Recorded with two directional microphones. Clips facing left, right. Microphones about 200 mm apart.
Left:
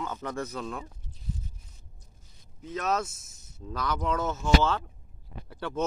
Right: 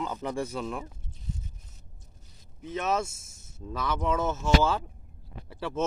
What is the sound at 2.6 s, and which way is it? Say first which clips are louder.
Speech: right 1 dB; 5° right (ahead or behind).